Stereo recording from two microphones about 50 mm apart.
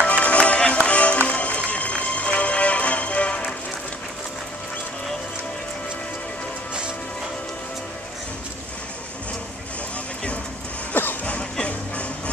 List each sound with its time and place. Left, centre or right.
0.0 s music: left
10.9 s music: left
11.2 s music: left